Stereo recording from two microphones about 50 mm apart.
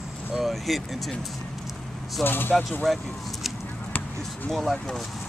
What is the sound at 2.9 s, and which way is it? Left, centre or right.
Speech, centre.